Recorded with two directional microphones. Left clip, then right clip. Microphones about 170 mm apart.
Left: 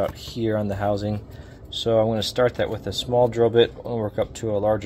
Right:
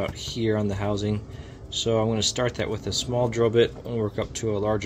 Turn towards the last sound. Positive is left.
turn(degrees=15)  # may be behind; listen again after turning